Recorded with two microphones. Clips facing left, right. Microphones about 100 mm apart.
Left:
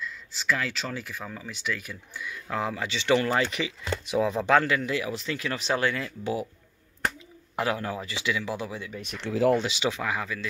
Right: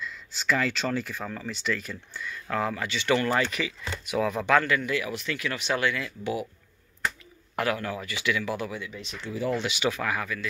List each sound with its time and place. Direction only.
0.0 s speech: centre (ahead or behind)
2.5 s speech: 20° left (ahead or behind); by 6.4 s 35° left (ahead or behind)
7.5 s speech: 25° left (ahead or behind)
8.9 s speech: 55° left (ahead or behind)
9.2 s speech: 90° left
9.6 s speech: 25° left (ahead or behind)